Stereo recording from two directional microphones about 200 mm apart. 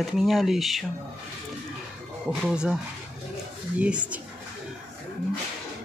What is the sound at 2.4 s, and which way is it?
Speech, 5° right (ahead or behind).